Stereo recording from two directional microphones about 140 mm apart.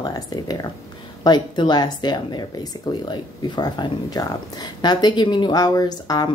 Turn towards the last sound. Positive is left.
turn(degrees=30)  # may be behind; listen again after turning